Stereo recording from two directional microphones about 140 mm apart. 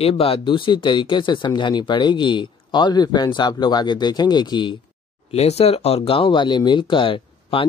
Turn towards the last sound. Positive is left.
turn(degrees=40)  # may be behind; listen again after turning